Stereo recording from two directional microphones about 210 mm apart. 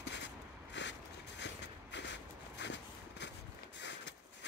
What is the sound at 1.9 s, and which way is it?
Walk, 55° left (ahead or behind).